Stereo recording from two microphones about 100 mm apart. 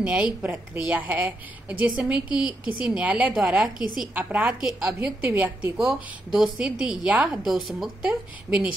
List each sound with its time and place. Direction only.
0.0 s a woman's voice: 15° right (ahead or behind)
4.1 s a woman's voice: 15° right (ahead or behind)
6.3 s a woman's voice: 5° right (ahead or behind)